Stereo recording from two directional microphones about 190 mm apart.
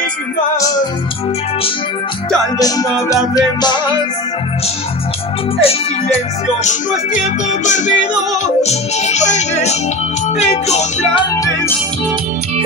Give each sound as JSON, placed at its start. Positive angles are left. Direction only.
{"t": 2.6, "sound": "music", "side_deg": 20}
{"t": 5.6, "sound": "music", "side_deg": 30}